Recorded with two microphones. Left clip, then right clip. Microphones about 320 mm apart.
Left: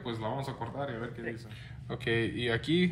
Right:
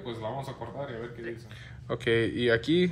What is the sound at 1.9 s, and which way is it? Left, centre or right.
Speech, centre.